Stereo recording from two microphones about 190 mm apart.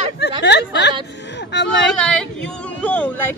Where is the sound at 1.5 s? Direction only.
65° left (ahead or behind).